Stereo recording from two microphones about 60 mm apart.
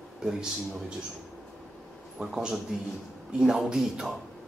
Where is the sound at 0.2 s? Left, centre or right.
Centre.